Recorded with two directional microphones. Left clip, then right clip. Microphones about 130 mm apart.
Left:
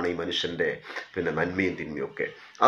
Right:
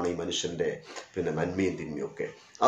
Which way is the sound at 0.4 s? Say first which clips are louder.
Left 3 dB; 15° right (ahead or behind).